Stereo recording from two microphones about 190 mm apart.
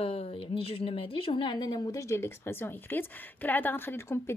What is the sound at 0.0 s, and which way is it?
A woman's voice, 30° left (ahead or behind).